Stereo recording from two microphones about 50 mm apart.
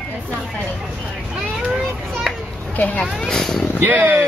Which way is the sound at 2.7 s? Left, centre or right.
Left.